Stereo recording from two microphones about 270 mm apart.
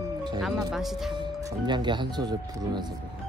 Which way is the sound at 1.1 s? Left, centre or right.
Centre.